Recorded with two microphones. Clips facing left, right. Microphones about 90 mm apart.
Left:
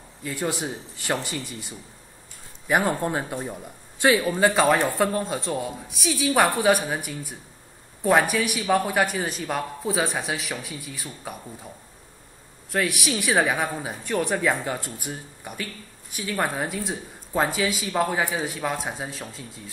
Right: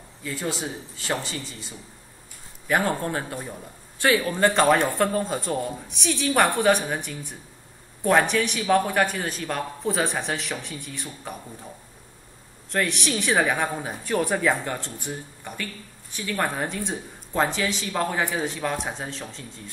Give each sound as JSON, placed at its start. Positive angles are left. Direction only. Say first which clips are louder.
{"t": 0.3, "sound": "speech", "louder": "left 2 dB", "side_deg": 15}
{"t": 2.7, "sound": "speech", "louder": "left 1 dB", "side_deg": 10}
{"t": 4.3, "sound": "speech", "louder": "even", "side_deg": 5}
{"t": 12.7, "sound": "speech", "louder": "even", "side_deg": 5}